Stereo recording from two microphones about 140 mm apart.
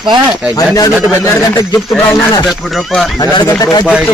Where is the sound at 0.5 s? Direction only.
25° left (ahead or behind).